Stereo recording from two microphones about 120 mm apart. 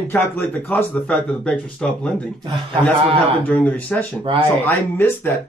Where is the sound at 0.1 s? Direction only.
15° left (ahead or behind).